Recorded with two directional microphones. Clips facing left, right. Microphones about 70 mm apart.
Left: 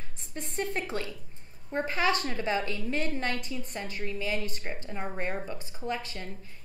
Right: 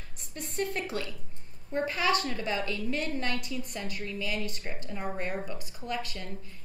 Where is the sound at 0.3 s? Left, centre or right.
Left.